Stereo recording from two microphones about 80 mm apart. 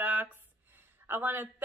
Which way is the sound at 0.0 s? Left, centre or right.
Right.